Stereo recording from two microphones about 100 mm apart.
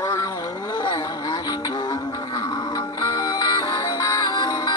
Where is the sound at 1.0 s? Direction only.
45° left (ahead or behind).